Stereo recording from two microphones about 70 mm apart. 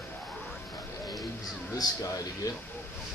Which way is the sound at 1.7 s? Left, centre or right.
Left.